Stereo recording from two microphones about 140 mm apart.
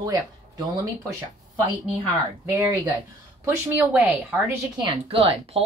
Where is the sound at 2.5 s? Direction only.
20° right (ahead or behind).